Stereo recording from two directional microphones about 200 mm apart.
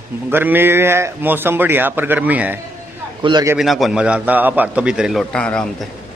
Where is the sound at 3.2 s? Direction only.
20° right (ahead or behind).